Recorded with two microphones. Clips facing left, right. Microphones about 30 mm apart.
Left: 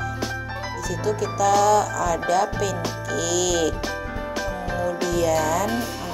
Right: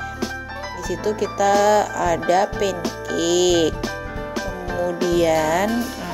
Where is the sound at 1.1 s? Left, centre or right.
Centre.